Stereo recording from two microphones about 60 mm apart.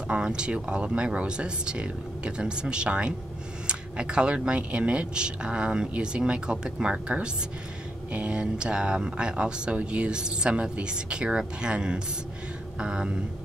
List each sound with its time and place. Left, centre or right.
0.1 s speech: centre